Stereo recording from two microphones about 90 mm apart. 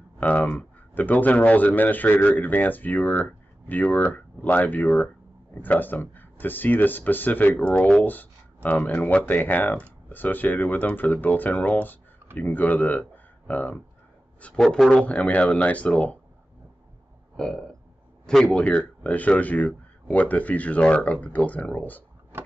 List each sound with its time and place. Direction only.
0.2 s speech: 15° left (ahead or behind)
17.4 s speech: 5° left (ahead or behind)
22.3 s a sound: 25° right (ahead or behind)